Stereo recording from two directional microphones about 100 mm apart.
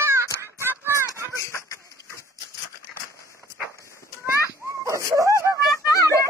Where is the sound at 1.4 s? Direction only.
30° left (ahead or behind).